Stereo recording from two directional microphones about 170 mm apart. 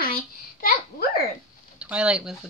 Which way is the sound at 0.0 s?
60° left (ahead or behind).